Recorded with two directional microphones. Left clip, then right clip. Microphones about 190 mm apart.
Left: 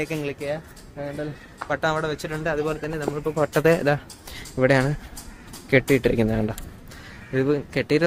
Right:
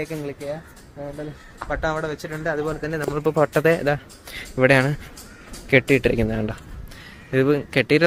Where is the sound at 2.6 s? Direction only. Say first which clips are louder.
Right 1 dB; 30° right (ahead or behind).